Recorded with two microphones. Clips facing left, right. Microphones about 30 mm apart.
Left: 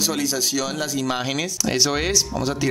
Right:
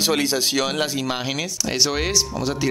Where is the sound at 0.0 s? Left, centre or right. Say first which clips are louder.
Right 3 dB; right.